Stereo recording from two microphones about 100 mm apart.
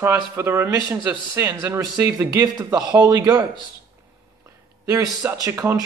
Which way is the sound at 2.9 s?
30° right (ahead or behind).